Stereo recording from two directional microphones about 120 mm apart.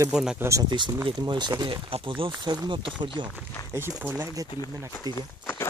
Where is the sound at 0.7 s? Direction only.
40° right (ahead or behind).